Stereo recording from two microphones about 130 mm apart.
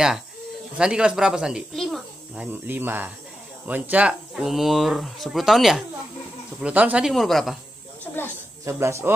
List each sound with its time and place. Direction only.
0.7 s speech: 5° right (ahead or behind)
2.3 s speech: 10° right (ahead or behind)
8.6 s speech: 20° right (ahead or behind)